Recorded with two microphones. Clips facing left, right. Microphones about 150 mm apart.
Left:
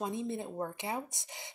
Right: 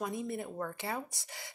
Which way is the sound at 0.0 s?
25° left (ahead or behind).